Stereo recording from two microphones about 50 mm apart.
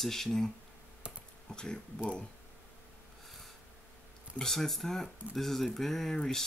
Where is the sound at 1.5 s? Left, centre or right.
Centre.